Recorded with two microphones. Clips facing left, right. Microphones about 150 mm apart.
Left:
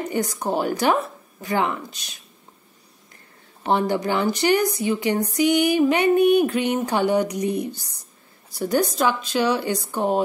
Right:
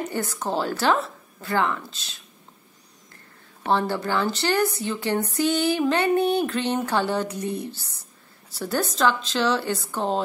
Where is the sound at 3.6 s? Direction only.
15° left (ahead or behind).